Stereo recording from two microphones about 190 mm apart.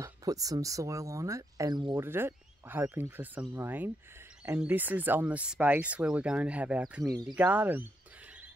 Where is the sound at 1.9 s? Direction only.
10° right (ahead or behind).